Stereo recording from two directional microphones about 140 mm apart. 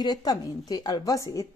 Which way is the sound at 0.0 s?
30° left (ahead or behind).